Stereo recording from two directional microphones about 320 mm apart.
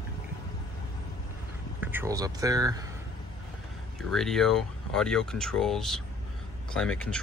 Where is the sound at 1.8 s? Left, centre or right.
Centre.